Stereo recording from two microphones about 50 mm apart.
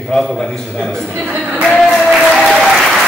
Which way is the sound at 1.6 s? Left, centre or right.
Centre.